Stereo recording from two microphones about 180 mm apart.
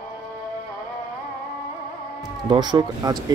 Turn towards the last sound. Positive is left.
turn(degrees=-20)  # may be behind; listen again after turning